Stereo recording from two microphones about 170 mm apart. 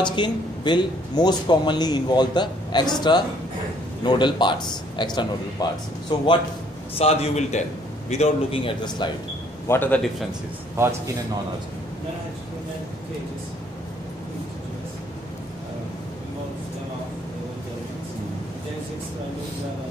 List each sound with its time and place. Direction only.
0.0 s speech: 25° left (ahead or behind)
7.0 s a man's voice: 35° left (ahead or behind)
9.7 s a man's voice: 10° left (ahead or behind)